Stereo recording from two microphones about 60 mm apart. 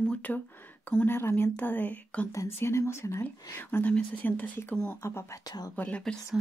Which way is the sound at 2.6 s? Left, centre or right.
Left.